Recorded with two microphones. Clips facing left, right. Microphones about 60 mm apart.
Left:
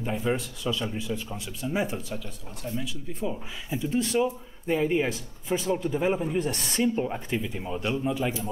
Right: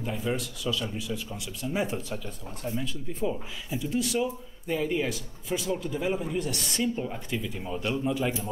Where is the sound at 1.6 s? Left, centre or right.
Left.